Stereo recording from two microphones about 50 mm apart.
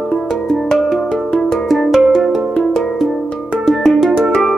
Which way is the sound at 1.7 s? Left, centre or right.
Centre.